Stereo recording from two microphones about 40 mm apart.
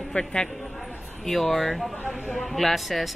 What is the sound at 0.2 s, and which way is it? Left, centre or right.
Speech, left.